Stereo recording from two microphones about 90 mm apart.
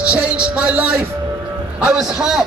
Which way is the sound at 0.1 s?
15° right (ahead or behind).